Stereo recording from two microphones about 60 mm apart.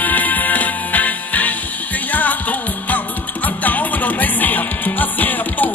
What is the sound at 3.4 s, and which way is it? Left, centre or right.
Music, left.